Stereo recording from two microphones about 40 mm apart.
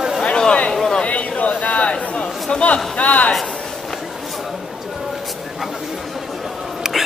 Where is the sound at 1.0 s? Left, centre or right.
Left.